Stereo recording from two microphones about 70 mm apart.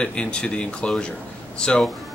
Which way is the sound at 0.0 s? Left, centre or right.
Centre.